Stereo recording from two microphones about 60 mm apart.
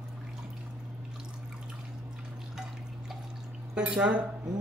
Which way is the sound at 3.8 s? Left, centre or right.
Centre.